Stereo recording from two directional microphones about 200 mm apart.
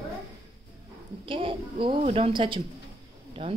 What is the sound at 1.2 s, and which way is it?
A child's voice, 25° right (ahead or behind).